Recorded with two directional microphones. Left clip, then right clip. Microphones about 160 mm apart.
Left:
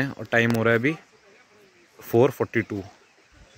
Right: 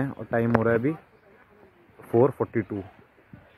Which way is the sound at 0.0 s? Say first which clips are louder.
Left 4 dB; 25° left (ahead or behind).